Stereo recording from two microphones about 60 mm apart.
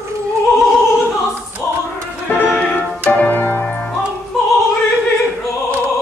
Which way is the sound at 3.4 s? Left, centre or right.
Left.